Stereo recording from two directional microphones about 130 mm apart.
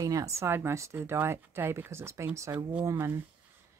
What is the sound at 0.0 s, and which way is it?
Speech, 25° right (ahead or behind).